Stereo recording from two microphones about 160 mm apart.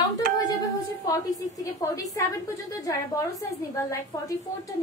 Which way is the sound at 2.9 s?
20° left (ahead or behind).